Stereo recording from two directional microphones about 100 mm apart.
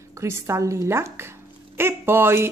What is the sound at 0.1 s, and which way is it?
Speech, 30° right (ahead or behind).